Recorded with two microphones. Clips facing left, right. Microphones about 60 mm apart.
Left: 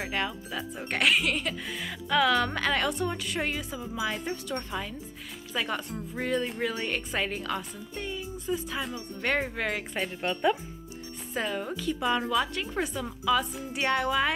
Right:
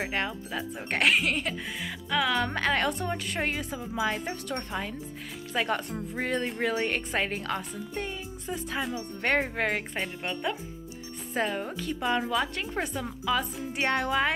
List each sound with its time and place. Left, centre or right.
0.0 s speech: right
1.7 s speech: centre
2.5 s a woman's voice: right
3.9 s speech: right
4.6 s speech: right
9.9 s speech: centre
11.3 s speech: right
12.1 s a woman's voice: centre